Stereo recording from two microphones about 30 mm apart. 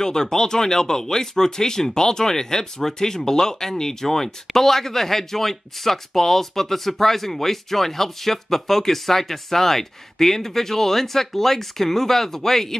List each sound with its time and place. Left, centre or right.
0.0 s speech: left